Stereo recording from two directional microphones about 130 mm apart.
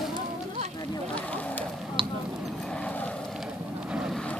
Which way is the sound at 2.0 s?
40° right (ahead or behind).